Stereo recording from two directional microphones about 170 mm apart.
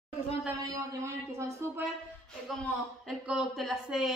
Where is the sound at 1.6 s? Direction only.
15° right (ahead or behind).